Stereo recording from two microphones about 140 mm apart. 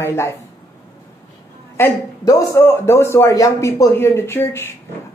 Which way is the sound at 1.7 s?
25° left (ahead or behind).